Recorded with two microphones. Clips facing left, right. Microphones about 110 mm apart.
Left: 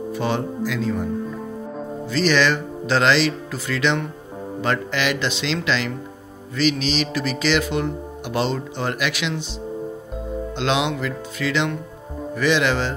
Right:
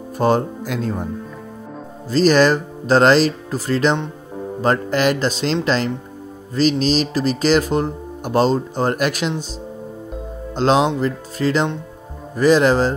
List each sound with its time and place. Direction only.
0.1 s speech: 45° right (ahead or behind)
2.0 s speech: 40° right (ahead or behind)
10.5 s speech: 40° right (ahead or behind)